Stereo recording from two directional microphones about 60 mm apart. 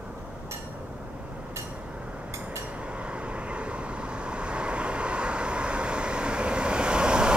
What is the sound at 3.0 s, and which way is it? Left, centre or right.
Vehicle, centre.